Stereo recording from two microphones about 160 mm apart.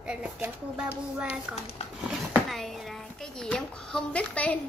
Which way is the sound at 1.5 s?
45° left (ahead or behind).